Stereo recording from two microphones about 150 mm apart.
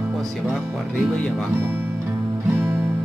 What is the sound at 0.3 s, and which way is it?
Speech, centre (ahead or behind).